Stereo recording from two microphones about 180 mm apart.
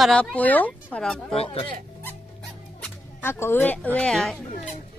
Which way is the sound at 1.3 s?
35° left (ahead or behind).